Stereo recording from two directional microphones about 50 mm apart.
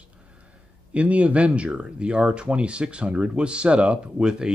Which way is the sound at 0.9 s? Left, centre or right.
Right.